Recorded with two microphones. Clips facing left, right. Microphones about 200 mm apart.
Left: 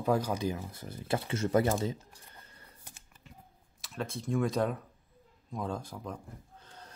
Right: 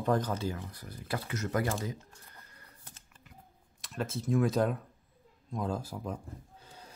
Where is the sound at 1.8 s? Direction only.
25° left (ahead or behind).